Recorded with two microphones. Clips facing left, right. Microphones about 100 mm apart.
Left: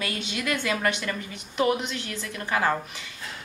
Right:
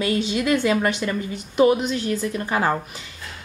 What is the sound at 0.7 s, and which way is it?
Speech, 25° right (ahead or behind).